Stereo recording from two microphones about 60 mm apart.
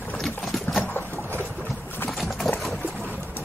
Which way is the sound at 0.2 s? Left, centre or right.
Centre.